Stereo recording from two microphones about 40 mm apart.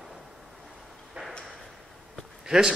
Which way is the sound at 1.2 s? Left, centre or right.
Right.